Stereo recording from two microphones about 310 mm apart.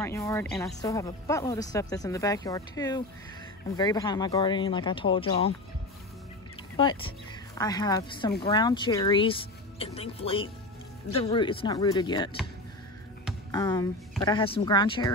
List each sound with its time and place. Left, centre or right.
0.0 s speech: centre
6.8 s speech: centre
13.5 s speech: centre